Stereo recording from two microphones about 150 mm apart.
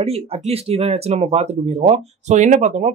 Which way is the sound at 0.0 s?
45° right (ahead or behind).